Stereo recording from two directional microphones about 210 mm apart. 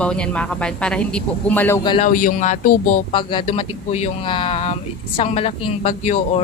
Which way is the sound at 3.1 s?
25° left (ahead or behind).